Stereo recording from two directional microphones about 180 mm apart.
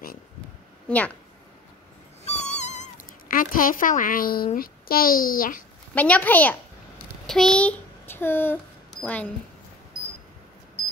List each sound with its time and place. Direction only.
0.8 s a woman's voice: 5° left (ahead or behind)
2.2 s cat: 40° left (ahead or behind); by 4.5 s 55° left (ahead or behind)
4.6 s a child's voice: 55° left (ahead or behind)
5.9 s a woman's voice: 10° left (ahead or behind)